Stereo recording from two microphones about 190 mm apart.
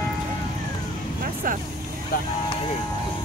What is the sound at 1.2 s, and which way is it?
Vehicle, 45° right (ahead or behind).